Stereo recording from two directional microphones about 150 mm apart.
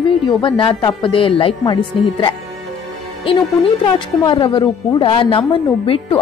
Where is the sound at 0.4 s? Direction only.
35° left (ahead or behind).